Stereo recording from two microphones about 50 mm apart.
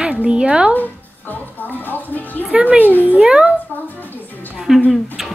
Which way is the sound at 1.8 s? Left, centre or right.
Left.